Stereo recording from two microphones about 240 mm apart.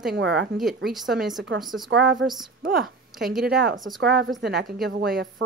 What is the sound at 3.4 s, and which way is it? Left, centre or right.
Speech, right.